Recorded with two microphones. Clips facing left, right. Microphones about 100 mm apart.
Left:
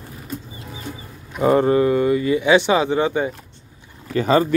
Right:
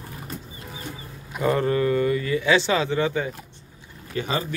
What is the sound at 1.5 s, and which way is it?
Speech, 25° left (ahead or behind).